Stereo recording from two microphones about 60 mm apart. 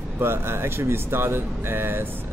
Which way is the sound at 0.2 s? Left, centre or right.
Right.